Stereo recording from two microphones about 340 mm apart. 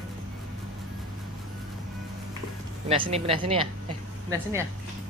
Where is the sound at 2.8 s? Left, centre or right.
Centre.